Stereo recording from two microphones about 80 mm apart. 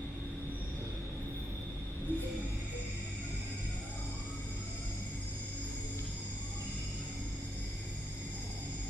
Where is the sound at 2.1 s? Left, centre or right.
Left.